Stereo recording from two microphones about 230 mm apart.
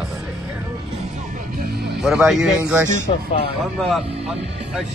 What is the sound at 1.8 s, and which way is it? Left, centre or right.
Speech, centre.